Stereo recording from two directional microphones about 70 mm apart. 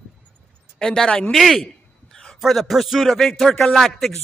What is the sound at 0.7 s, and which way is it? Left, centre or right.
Speech, centre.